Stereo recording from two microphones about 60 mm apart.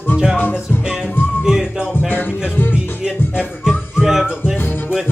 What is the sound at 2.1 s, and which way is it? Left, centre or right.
Music, left.